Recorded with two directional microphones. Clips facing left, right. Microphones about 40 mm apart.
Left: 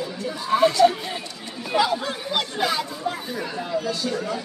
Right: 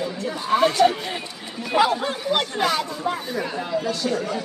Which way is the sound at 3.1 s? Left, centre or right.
Right.